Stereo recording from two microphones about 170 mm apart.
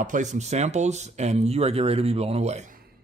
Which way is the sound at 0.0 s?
45° right (ahead or behind).